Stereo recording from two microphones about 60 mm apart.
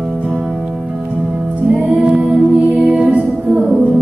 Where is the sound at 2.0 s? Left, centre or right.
Centre.